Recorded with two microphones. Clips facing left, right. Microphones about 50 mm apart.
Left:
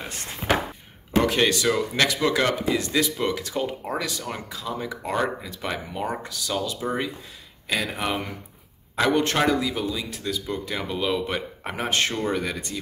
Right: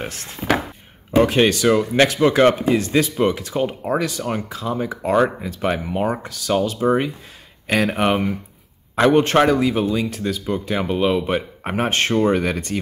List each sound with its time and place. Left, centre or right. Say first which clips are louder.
1.1 s speech: right 5 dB; right
7.6 s speech: right 8 dB; right
8.9 s speech: right 7 dB; right
11.8 s speech: right 7 dB; right